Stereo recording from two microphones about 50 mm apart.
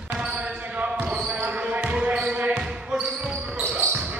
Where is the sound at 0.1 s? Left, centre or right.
Right.